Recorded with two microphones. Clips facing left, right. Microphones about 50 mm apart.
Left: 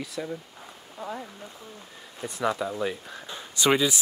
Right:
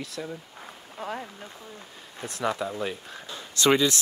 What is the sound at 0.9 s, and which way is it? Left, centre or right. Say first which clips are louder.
Speech: right 1 dB; right.